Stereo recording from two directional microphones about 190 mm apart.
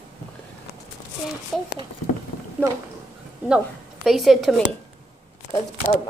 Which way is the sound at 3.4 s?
5° right (ahead or behind).